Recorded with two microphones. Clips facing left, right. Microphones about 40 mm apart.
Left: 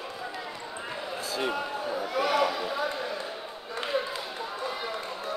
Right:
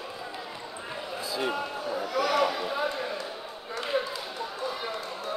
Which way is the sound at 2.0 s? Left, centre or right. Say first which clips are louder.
Right 1 dB; left.